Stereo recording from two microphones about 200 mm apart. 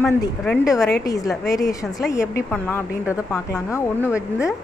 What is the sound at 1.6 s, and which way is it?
A woman's voice, 15° left (ahead or behind).